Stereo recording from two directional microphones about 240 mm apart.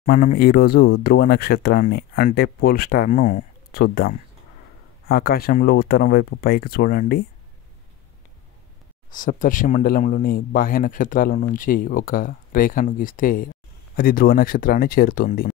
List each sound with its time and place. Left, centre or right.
0.0 s speech: left
9.1 s speech: left